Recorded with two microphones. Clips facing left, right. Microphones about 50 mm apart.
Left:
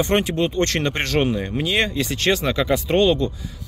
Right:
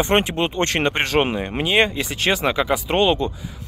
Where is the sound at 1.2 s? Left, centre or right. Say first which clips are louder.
Even; right.